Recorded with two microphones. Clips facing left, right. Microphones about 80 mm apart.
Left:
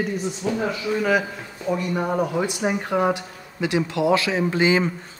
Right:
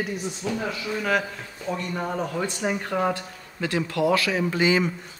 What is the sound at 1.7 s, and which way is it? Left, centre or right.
A man's voice, centre.